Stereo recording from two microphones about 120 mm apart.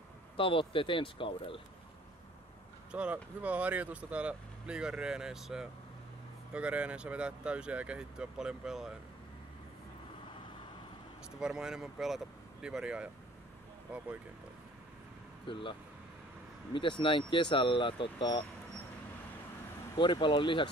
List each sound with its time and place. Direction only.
0.4 s speech: 45° left (ahead or behind)
2.9 s speech: 10° right (ahead or behind)
11.3 s speech: 5° right (ahead or behind)
15.5 s speech: 45° left (ahead or behind)
16.7 s speech: 45° left (ahead or behind)
20.0 s speech: 40° left (ahead or behind)